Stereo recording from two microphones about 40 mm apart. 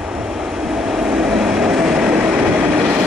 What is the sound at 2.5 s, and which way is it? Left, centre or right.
Train, right.